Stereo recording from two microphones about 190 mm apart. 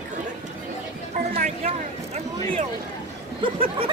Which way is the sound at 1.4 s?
35° right (ahead or behind).